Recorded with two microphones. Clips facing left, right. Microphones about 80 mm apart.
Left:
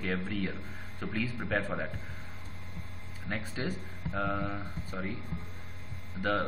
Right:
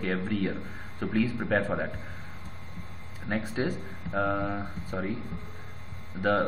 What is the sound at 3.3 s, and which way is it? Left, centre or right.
A man's voice, centre.